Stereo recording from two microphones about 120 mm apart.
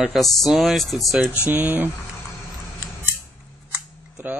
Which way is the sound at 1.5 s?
15° right (ahead or behind).